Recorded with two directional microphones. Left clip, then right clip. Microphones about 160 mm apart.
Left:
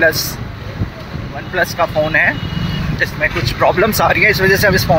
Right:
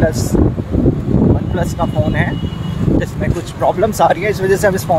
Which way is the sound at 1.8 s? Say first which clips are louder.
Left 6 dB; 15° right (ahead or behind).